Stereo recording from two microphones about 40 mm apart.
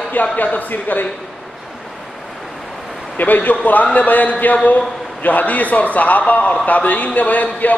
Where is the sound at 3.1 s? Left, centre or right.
Left.